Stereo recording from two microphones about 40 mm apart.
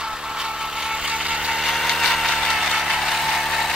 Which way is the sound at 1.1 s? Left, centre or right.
Centre.